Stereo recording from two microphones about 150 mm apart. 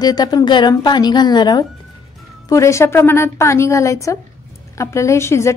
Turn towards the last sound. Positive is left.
turn(degrees=20)  # may be behind; listen again after turning